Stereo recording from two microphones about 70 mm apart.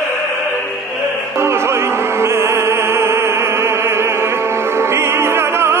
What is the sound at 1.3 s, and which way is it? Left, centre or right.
Opera, right.